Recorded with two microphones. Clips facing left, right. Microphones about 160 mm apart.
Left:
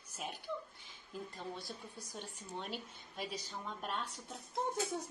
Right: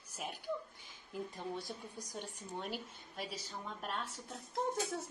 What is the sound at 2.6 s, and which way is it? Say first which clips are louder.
A woman's voice: right 3 dB; 5° right (ahead or behind).